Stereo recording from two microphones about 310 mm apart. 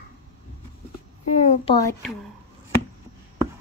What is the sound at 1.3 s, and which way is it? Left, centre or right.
Speech, left.